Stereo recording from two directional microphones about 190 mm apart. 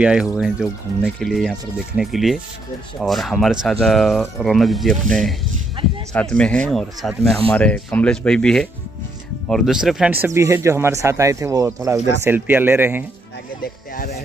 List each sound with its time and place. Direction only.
0.0 s speech: 5° right (ahead or behind)
5.8 s speech: 30° right (ahead or behind)
6.1 s speech: 5° left (ahead or behind); by 13.0 s 10° right (ahead or behind)
13.9 s music: 55° left (ahead or behind)